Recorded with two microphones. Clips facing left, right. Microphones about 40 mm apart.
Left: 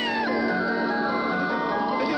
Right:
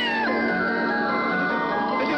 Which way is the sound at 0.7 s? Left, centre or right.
Centre.